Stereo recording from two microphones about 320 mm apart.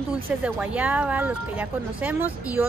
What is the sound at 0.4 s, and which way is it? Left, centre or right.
Speech, centre.